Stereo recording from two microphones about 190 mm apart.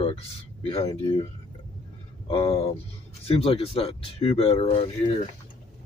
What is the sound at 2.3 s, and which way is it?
Speech, 30° left (ahead or behind).